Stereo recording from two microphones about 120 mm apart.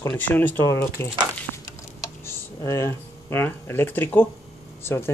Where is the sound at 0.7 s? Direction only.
25° left (ahead or behind).